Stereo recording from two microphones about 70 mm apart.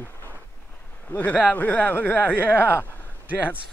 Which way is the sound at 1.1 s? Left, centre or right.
Left.